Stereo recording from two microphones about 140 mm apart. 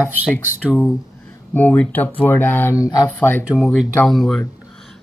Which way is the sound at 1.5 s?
15° left (ahead or behind).